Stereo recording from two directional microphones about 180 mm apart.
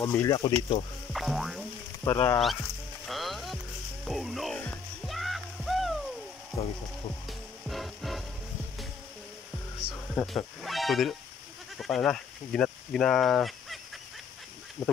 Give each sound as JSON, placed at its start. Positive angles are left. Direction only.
{"t": 0.0, "sound": "speech", "side_deg": 15}
{"t": 0.6, "sound": "speech", "side_deg": 30}
{"t": 1.1, "sound": "music", "side_deg": 0}
{"t": 2.0, "sound": "speech", "side_deg": 25}
{"t": 3.1, "sound": "music", "side_deg": 0}
{"t": 6.5, "sound": "frying", "side_deg": 0}
{"t": 7.2, "sound": "music", "side_deg": 0}
{"t": 10.2, "sound": "speech", "side_deg": 0}
{"t": 14.8, "sound": "speech", "side_deg": 20}